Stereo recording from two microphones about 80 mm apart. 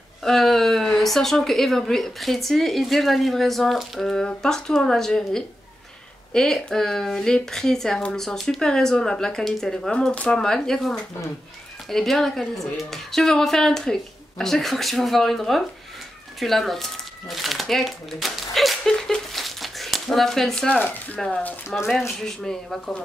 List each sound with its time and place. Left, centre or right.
0.2 s a woman's voice: centre
16.3 s crumpling: centre; by 21.2 s left
21.4 s speech: left
21.7 s a woman's voice: centre